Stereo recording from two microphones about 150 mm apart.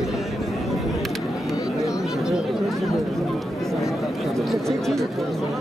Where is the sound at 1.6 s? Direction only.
20° left (ahead or behind).